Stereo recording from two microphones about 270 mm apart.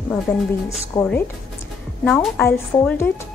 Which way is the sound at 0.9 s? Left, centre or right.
Centre.